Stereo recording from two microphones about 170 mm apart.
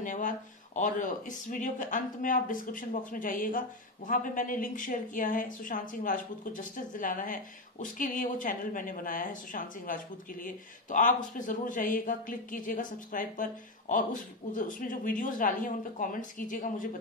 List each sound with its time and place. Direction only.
0.0 s speech: 50° left (ahead or behind)